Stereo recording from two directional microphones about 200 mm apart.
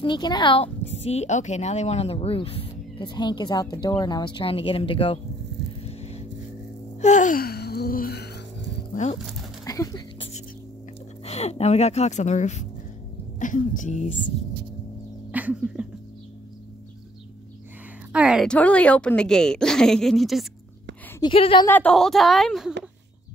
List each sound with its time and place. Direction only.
0.0 s speech: 20° left (ahead or behind)
5.9 s vehicle: 30° left (ahead or behind)
7.0 s music: 35° left (ahead or behind)
8.9 s speech: 35° left (ahead or behind)
9.7 s speech: 20° left (ahead or behind)
11.2 s speech: 30° left (ahead or behind)
15.3 s a sound: 5° right (ahead or behind)
18.1 s a woman's voice: 5° right (ahead or behind)
21.2 s speech: 25° left (ahead or behind)
21.6 s a woman's voice: 5° left (ahead or behind)